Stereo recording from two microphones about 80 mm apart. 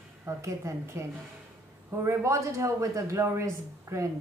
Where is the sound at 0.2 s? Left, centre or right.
Right.